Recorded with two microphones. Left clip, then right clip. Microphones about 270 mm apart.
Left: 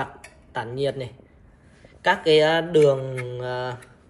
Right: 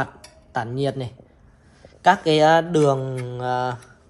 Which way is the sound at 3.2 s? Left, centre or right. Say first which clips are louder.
Right 5 dB; centre.